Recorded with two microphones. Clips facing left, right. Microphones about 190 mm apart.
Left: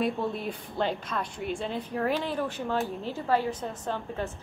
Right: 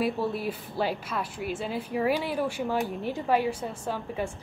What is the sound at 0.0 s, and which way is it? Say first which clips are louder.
A woman's voice: right 1 dB; 5° right (ahead or behind).